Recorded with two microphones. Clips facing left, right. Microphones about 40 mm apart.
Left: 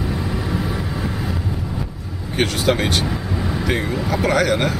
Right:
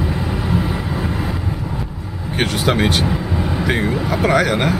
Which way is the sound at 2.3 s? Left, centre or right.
Centre.